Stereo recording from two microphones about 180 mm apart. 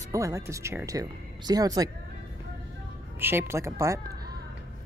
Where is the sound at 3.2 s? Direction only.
10° right (ahead or behind).